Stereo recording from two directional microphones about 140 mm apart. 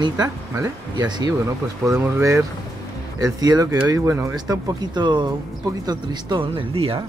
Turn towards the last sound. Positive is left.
turn(degrees=-40)  # may be behind; listen again after turning